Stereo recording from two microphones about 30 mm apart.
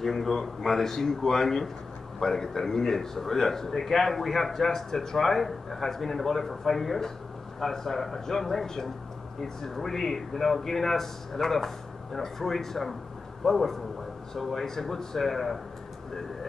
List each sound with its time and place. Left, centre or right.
0.0 s a man's voice: centre